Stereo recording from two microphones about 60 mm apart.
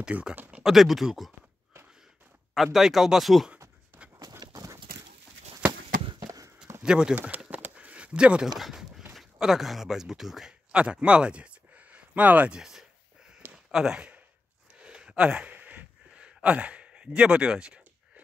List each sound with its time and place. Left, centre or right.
0.1 s speech: centre
0.7 s speech: centre
2.5 s speech: centre
4.4 s horse: right
5.7 s a sound: right
6.8 s speech: centre
7.2 s a sound: right
8.5 s a sound: centre
9.4 s a man's voice: centre
10.8 s speech: centre
12.5 s speech: centre
14.8 s a sound: centre